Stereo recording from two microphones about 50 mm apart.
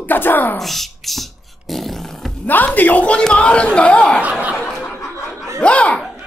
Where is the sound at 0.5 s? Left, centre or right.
Centre.